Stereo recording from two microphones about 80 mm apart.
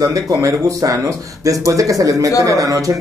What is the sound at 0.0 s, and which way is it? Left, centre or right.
Speech, right.